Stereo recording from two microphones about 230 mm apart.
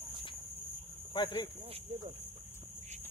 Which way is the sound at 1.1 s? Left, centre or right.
Centre.